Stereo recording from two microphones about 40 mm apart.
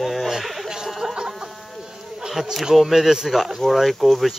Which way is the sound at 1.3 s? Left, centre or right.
Centre.